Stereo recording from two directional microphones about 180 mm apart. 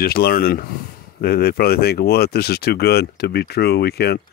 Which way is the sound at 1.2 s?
60° left (ahead or behind).